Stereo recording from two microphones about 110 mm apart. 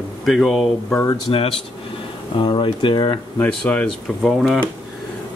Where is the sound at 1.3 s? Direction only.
55° left (ahead or behind).